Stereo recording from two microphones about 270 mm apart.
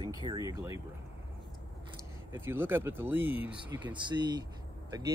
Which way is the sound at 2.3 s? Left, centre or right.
Centre.